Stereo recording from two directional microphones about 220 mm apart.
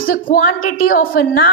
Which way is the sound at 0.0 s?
40° left (ahead or behind).